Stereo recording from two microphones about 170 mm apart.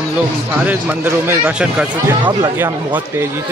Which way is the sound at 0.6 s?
10° right (ahead or behind).